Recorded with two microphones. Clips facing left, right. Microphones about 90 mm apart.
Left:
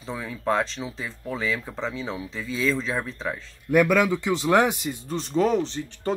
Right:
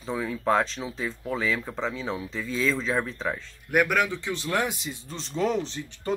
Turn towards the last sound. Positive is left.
turn(degrees=5)  # may be behind; listen again after turning